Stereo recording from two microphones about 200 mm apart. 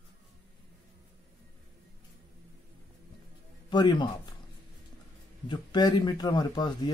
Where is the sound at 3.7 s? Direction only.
20° left (ahead or behind).